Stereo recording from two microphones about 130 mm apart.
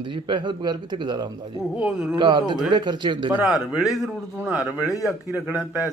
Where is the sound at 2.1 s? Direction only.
35° right (ahead or behind).